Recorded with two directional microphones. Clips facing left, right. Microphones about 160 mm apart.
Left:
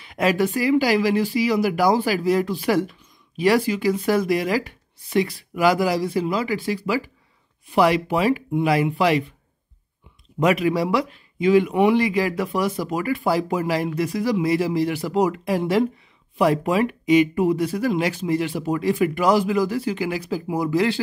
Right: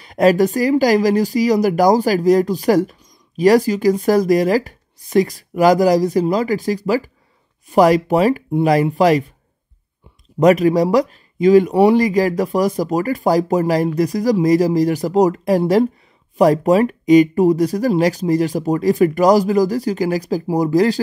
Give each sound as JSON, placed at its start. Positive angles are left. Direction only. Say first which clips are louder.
{"t": 0.0, "sound": "speech", "louder": "right 7 dB", "side_deg": -40}
{"t": 10.4, "sound": "speech", "louder": "right 7 dB", "side_deg": -40}